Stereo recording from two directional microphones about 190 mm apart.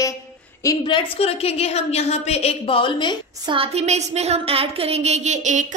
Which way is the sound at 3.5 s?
30° right (ahead or behind).